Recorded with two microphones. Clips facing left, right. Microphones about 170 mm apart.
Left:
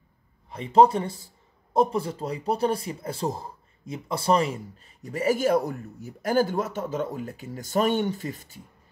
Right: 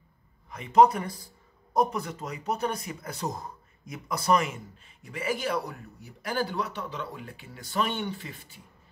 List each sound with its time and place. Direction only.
0.5 s speech: 30° left (ahead or behind)